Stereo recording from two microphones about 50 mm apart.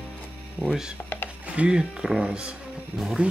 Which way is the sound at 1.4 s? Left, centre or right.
Right.